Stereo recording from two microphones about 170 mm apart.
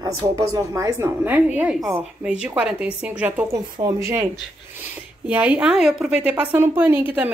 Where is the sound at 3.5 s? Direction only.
20° right (ahead or behind).